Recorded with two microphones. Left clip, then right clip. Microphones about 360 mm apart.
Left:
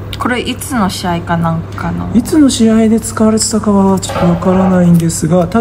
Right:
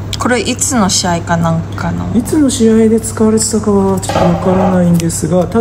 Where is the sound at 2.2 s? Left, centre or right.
Left.